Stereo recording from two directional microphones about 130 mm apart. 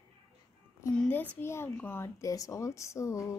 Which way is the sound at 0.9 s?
10° left (ahead or behind).